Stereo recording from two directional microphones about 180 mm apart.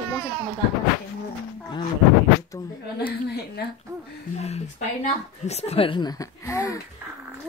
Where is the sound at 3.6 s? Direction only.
60° left (ahead or behind).